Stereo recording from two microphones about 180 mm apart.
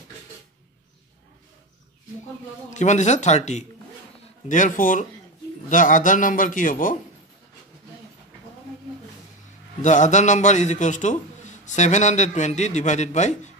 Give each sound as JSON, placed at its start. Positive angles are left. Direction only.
{"t": 2.7, "sound": "a man's voice", "side_deg": 40}
{"t": 9.8, "sound": "a man's voice", "side_deg": 45}